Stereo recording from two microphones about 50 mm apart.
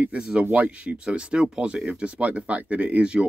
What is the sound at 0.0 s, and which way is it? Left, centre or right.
Speech, right.